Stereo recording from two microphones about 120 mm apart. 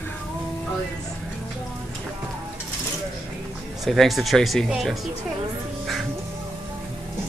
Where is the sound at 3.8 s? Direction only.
Centre (ahead or behind).